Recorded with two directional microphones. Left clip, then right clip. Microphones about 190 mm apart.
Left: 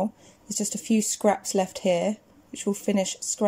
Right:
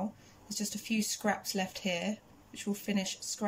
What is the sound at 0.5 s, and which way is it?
Speech, 30° left (ahead or behind).